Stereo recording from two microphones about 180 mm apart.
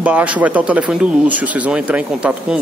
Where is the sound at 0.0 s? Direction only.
10° right (ahead or behind).